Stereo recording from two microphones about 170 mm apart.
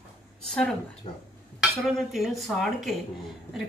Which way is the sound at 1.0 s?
35° left (ahead or behind).